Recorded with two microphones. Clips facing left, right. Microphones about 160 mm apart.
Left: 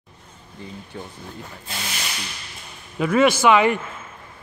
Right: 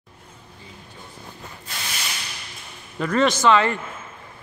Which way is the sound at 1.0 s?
70° left (ahead or behind).